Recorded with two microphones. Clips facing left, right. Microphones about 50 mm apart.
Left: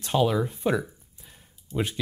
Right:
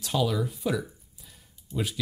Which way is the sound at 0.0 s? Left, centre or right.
Left.